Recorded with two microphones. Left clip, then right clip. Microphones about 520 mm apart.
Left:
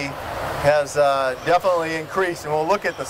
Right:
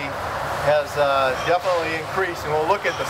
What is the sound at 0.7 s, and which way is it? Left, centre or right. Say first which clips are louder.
Speech: left 2 dB; left.